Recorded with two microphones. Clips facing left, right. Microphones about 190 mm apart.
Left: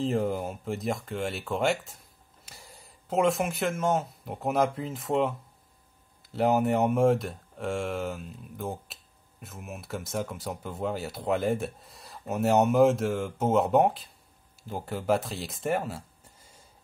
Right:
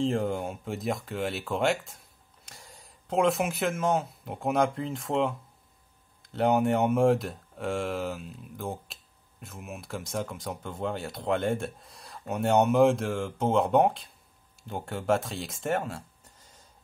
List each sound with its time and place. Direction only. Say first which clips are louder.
0.0 s speech: even; 5° left (ahead or behind)